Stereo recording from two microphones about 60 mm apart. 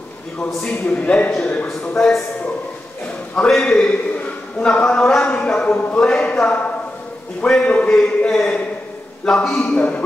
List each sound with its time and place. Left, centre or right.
0.7 s a man's voice: left
3.3 s a man's voice: centre
5.2 s a sound: centre
5.9 s a man's voice: centre
9.8 s a man's voice: left